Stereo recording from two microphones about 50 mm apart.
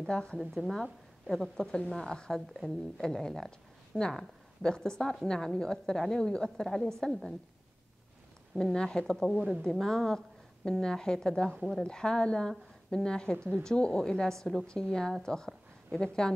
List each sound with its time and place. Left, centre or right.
0.0 s a woman's voice: centre
0.4 s a woman's voice: centre
8.7 s a woman's voice: centre